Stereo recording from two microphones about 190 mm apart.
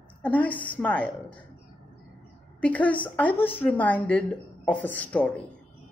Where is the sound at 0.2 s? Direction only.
10° left (ahead or behind).